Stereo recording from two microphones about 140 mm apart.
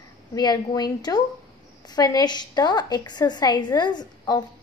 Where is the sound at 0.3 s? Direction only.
30° left (ahead or behind).